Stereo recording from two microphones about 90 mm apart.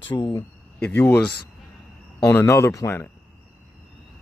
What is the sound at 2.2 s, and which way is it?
Speech, 30° left (ahead or behind).